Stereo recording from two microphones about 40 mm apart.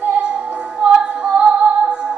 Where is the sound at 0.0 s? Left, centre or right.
Right.